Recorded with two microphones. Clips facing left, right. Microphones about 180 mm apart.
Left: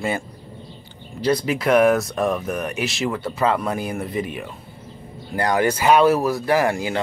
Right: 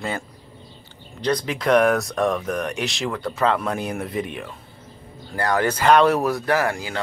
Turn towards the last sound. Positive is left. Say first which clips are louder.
# left 3 dB
turn(degrees=20)  # may be behind; listen again after turning